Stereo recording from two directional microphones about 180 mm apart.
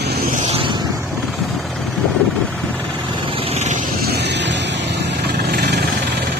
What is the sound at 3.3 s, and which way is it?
Vehicle, 30° right (ahead or behind).